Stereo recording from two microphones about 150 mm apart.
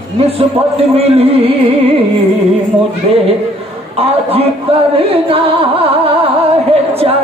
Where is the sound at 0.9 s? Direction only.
40° right (ahead or behind).